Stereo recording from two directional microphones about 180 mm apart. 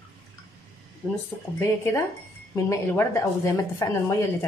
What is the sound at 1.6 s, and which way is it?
Speech, 15° left (ahead or behind).